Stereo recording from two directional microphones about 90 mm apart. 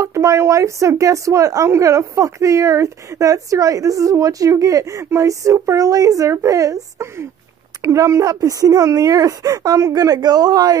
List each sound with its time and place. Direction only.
0.0 s speech: 35° right (ahead or behind)